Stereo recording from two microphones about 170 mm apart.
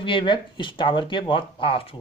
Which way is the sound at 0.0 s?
30° left (ahead or behind).